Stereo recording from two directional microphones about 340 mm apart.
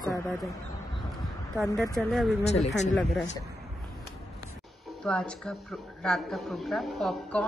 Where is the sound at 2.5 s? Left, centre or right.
Centre.